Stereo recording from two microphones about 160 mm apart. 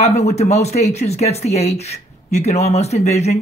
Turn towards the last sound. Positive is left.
turn(degrees=40)  # may be behind; listen again after turning